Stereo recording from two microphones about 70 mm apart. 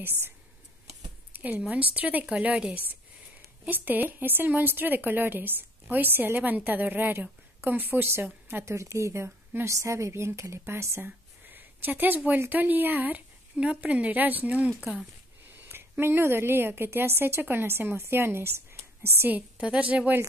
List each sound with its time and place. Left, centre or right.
0.0 s a woman's voice: right
1.3 s a sound: right
1.7 s a woman's voice: right
8.6 s a woman's voice: right
9.7 s a woman's voice: right
11.5 s a sound: right
12.4 s a woman's voice: right
15.6 s a woman's voice: right
19.3 s a woman's voice: centre